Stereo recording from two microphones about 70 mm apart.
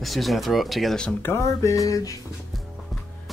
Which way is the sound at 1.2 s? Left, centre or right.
Left.